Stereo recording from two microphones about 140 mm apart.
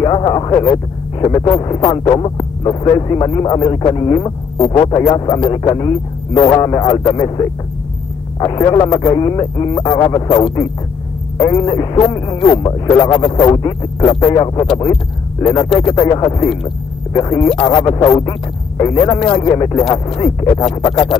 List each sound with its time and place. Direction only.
0.0 s speech: 30° left (ahead or behind)
10.4 s speech: 40° left (ahead or behind)
11.3 s speech: 25° left (ahead or behind)
19.0 s speech: 35° left (ahead or behind)